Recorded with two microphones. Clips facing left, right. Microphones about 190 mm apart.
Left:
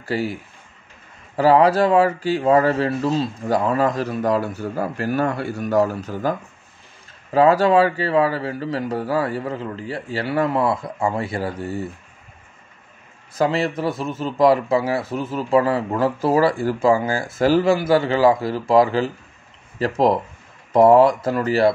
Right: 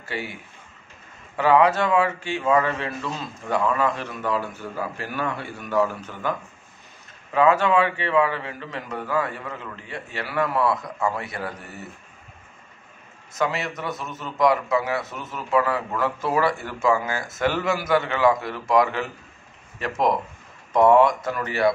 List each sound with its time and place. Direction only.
0.0 s speech: 35° left (ahead or behind)
7.3 s speech: 35° left (ahead or behind)
13.3 s speech: 30° left (ahead or behind)